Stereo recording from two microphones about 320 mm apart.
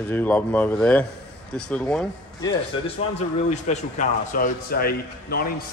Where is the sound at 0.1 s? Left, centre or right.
Centre.